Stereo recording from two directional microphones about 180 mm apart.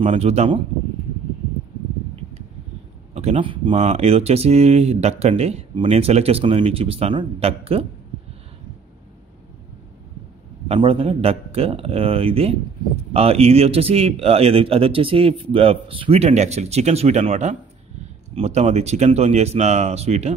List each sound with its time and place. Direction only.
0.0 s speech: 35° right (ahead or behind)
3.2 s speech: 35° right (ahead or behind)
10.7 s speech: 30° right (ahead or behind)